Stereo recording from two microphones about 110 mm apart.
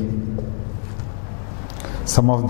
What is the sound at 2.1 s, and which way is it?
Speech, 10° left (ahead or behind).